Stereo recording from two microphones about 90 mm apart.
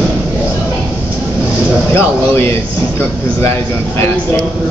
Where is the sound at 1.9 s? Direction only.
25° left (ahead or behind).